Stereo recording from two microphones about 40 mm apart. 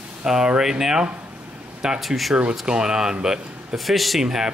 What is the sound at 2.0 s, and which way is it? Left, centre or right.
Speech, centre.